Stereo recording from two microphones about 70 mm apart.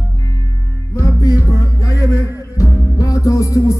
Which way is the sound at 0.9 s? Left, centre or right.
Left.